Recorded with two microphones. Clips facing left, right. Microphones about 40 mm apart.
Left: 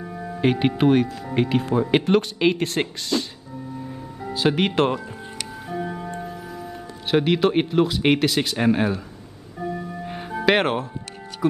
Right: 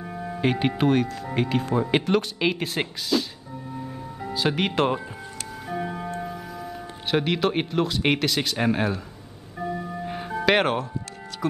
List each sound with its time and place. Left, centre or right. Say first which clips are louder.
0.0 s music: left 1 dB; centre
0.4 s speech: left 3 dB; centre
4.3 s speech: left 4 dB; centre
9.6 s music: even; centre